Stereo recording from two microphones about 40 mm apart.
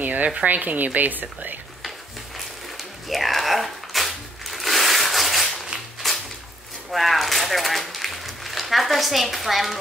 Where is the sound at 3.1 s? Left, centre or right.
Centre.